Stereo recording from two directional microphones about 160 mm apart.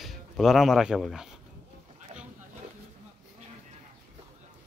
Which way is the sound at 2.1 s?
45° right (ahead or behind).